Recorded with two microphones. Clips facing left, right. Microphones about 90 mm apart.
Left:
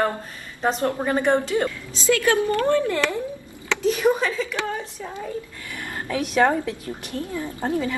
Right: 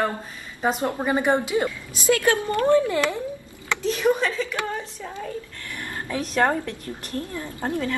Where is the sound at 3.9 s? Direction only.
10° left (ahead or behind).